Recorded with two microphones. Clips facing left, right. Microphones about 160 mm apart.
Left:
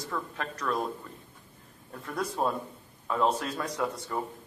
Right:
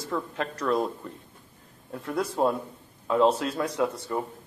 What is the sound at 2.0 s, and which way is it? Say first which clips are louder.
Speech: right 5 dB; 10° right (ahead or behind).